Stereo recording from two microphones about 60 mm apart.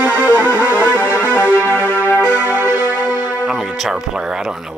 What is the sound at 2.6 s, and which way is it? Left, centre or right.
Music, left.